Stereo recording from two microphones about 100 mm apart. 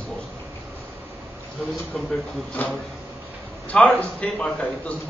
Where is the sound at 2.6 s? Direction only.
15° left (ahead or behind).